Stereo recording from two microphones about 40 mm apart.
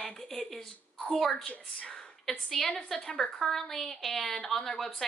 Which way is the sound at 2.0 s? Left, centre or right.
Centre.